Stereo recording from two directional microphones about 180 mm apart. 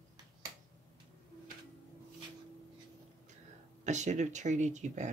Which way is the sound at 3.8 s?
40° right (ahead or behind).